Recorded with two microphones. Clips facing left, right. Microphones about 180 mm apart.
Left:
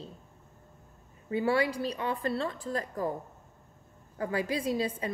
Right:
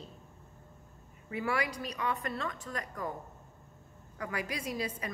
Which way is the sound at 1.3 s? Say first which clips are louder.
Left 6 dB; 30° left (ahead or behind).